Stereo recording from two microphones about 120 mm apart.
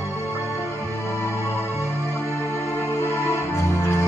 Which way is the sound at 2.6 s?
65° left (ahead or behind).